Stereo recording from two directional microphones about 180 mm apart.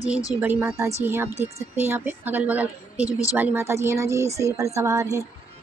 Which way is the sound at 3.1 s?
20° left (ahead or behind).